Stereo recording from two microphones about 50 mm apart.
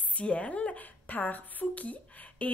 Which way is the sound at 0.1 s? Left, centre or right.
Left.